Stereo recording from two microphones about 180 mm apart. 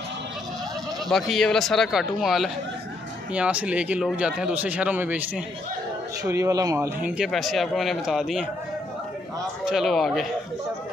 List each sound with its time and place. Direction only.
1.0 s speech: centre (ahead or behind); by 6.9 s 20° right (ahead or behind)
7.1 s speech: centre (ahead or behind)
9.7 s speech: centre (ahead or behind)